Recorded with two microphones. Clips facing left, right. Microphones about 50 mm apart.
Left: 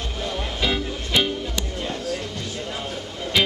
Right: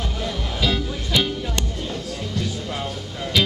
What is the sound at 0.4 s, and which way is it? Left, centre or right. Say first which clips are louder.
Music: even; left.